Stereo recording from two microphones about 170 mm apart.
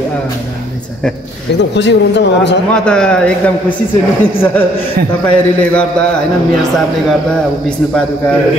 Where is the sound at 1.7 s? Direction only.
90° left.